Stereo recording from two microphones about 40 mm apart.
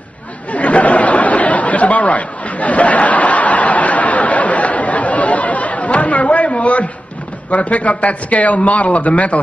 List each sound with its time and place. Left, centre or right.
0.5 s chatter: left
7.5 s speech: left